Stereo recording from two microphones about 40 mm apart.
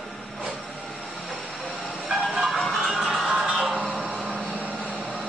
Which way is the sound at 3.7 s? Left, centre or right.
Centre.